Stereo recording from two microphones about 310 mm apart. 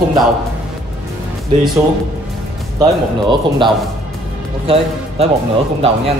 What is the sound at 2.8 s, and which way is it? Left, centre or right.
Speech, centre.